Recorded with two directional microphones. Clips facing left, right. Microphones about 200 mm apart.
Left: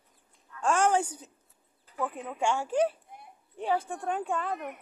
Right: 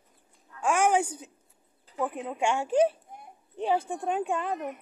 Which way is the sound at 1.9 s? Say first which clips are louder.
Right 3 dB; 20° right (ahead or behind).